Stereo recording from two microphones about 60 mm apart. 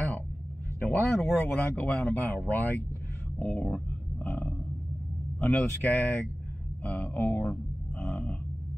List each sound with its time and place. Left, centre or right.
0.7 s speech: left